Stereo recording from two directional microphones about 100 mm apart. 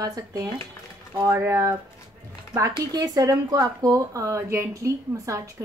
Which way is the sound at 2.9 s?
40° right (ahead or behind).